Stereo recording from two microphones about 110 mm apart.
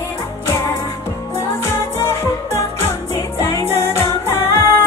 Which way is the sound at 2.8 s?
25° left (ahead or behind).